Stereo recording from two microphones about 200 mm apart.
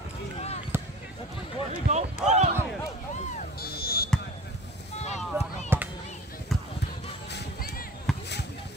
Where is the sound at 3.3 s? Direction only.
50° left (ahead or behind).